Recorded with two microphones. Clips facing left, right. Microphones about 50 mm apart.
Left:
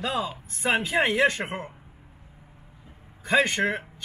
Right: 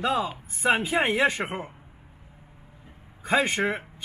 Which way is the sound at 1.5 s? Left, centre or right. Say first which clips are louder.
Even; centre.